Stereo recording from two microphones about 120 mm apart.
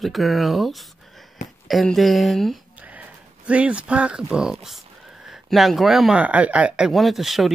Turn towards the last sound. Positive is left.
turn(degrees=0)  # may be behind; listen again after turning